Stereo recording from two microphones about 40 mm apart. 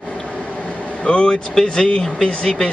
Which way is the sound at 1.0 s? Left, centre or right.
Left.